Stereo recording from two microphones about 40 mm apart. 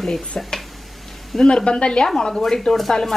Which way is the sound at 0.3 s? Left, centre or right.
Centre.